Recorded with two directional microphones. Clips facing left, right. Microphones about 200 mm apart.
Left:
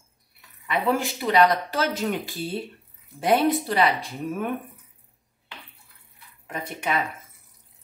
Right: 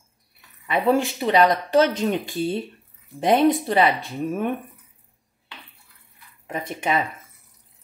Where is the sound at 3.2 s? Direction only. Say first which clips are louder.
Right 3 dB; 25° right (ahead or behind).